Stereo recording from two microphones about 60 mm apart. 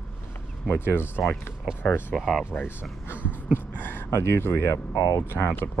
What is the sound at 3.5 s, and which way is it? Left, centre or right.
Speech, left.